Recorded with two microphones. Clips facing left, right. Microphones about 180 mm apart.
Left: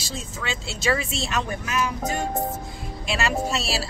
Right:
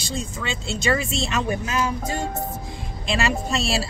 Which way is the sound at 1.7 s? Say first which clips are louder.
Right 1 dB; 30° right (ahead or behind).